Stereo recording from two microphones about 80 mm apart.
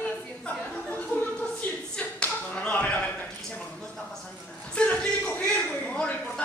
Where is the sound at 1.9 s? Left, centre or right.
Centre.